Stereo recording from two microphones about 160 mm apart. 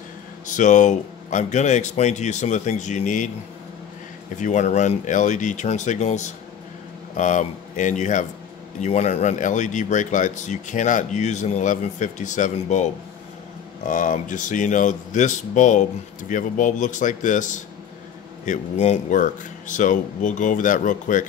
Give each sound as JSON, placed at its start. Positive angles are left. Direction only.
{"t": 0.5, "sound": "speech", "side_deg": 50}
{"t": 4.4, "sound": "speech", "side_deg": 50}